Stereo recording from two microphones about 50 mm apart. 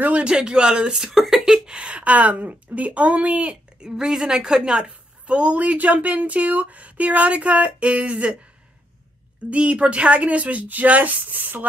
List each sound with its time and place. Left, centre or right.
0.2 s a woman's voice: centre
3.8 s a woman's voice: centre
9.5 s a woman's voice: right